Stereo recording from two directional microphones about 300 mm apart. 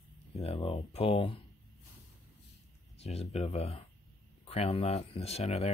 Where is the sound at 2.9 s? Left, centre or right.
Left.